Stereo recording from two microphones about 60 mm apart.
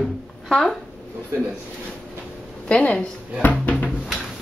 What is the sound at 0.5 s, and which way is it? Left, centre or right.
Speech, centre.